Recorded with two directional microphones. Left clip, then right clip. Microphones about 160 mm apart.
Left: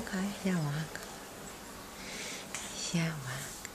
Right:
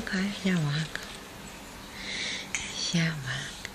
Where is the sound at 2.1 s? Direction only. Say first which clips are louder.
Right 9 dB; centre (ahead or behind).